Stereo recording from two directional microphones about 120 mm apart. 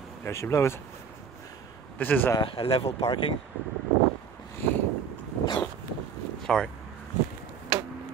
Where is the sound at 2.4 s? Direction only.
50° left (ahead or behind).